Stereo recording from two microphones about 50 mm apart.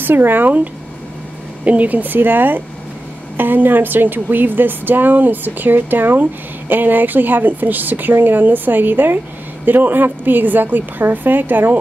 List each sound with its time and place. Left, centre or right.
0.0 s a woman's voice: right
1.6 s a woman's voice: right